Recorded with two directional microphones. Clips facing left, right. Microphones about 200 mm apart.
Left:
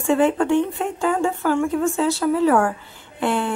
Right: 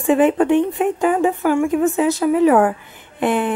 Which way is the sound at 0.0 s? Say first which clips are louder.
Right 3 dB; 15° right (ahead or behind).